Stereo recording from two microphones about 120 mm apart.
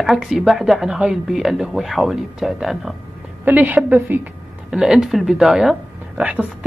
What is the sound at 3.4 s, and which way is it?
Speech, 15° right (ahead or behind).